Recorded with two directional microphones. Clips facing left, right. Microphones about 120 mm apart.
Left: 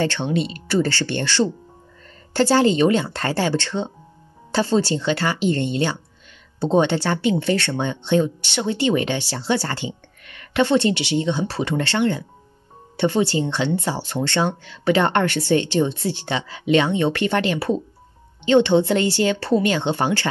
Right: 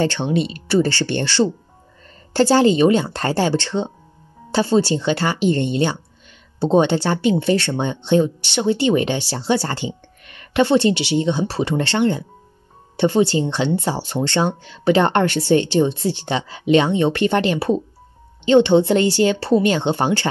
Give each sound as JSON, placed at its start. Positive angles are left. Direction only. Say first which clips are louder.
{"t": 0.0, "sound": "speech", "louder": "right 2 dB", "side_deg": -20}
{"t": 9.7, "sound": "a sound", "louder": "right 2 dB", "side_deg": -20}
{"t": 10.6, "sound": "speech", "louder": "right 2 dB", "side_deg": -15}